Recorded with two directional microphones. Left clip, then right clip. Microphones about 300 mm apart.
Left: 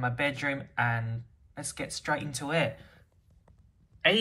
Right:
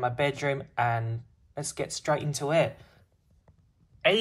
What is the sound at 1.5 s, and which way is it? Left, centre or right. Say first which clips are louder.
Speech: right 4 dB; right.